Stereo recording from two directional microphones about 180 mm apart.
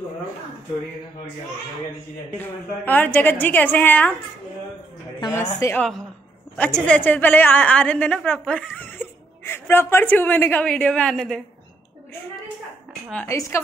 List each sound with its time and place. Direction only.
2.3 s a woman's voice: 10° left (ahead or behind)
5.5 s a woman's voice: 20° left (ahead or behind)
5.8 s a woman's voice: centre (ahead or behind)
13.1 s a woman's voice: 15° left (ahead or behind)